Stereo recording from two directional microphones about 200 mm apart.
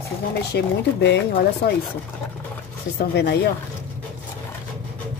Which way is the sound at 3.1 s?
55° left (ahead or behind).